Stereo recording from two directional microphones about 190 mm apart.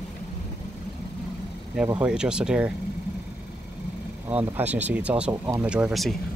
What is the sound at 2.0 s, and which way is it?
Speech, 5° right (ahead or behind).